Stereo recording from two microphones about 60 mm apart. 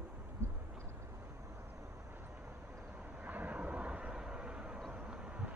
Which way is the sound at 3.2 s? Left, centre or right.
Right.